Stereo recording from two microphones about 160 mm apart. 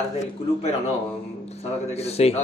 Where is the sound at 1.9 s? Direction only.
40° left (ahead or behind).